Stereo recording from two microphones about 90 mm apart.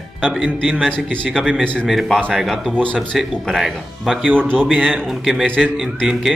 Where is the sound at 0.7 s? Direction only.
10° left (ahead or behind).